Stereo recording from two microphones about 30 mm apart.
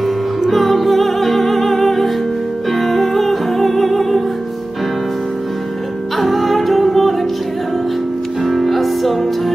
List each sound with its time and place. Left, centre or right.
0.5 s music: centre
6.1 s music: centre
8.5 s music: centre